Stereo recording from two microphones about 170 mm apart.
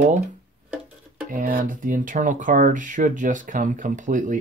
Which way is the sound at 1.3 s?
55° right (ahead or behind).